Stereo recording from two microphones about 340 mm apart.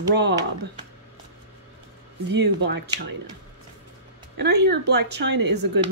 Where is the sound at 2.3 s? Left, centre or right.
Right.